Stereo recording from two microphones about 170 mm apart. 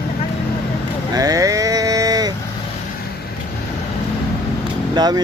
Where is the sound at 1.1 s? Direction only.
20° right (ahead or behind).